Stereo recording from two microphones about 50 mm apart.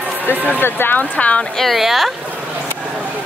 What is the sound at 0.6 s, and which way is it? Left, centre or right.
Speech, left.